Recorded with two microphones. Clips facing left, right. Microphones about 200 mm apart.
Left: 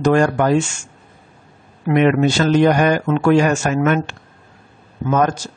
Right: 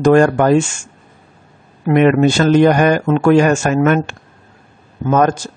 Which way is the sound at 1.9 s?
50° right (ahead or behind).